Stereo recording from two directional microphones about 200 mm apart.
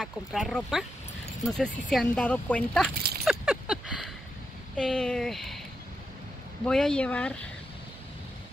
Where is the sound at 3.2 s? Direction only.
5° right (ahead or behind).